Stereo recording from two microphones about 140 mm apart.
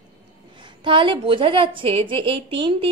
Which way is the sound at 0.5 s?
35° right (ahead or behind).